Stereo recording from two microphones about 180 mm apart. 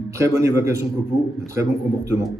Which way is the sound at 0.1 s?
15° right (ahead or behind).